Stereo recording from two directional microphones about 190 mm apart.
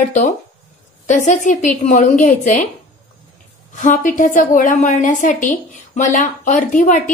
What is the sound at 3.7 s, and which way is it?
A woman's voice, 40° left (ahead or behind).